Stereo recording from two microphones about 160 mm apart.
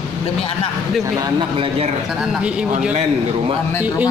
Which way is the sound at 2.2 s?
5° right (ahead or behind).